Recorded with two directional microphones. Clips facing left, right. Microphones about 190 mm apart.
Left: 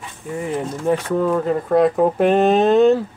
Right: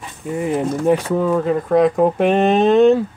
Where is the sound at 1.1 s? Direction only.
Centre (ahead or behind).